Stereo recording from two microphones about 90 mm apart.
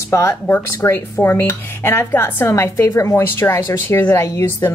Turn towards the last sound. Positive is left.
turn(degrees=30)  # may be behind; listen again after turning